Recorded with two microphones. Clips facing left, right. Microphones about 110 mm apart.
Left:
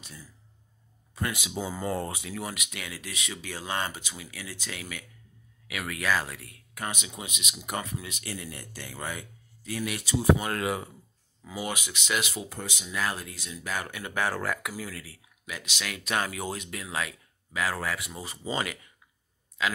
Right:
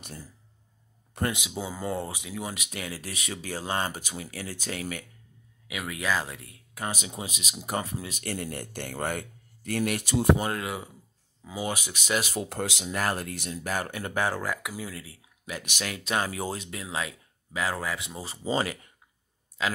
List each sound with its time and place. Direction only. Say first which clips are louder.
0.0 s speech: right 5 dB; 55° right (ahead or behind)
1.1 s speech: right 3 dB; 65° right (ahead or behind)
1.5 s speech: left 1 dB; 5° right (ahead or behind)
2.5 s speech: right 3 dB; 35° right (ahead or behind)
5.7 s speech: even; 20° right (ahead or behind)
8.2 s speech: right 5 dB; 50° right (ahead or behind)
10.6 s speech: left 4 dB; centre (ahead or behind)
11.4 s speech: right 2 dB; 20° right (ahead or behind)
11.7 s speech: right 2 dB; 40° right (ahead or behind)
12.4 s speech: right 6 dB; 80° right
12.8 s speech: right 1 dB; 45° right (ahead or behind)
14.2 s speech: left 1 dB; 15° right (ahead or behind); by 18.9 s 35° right (ahead or behind)